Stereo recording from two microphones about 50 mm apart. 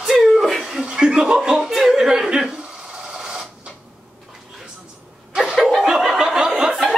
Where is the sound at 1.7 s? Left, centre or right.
Centre.